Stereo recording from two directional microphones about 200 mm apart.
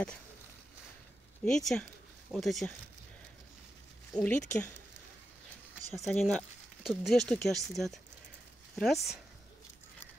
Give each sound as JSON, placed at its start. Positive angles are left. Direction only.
{"t": 1.4, "sound": "speech", "side_deg": 0}
{"t": 4.1, "sound": "speech", "side_deg": 5}
{"t": 5.9, "sound": "speech", "side_deg": 0}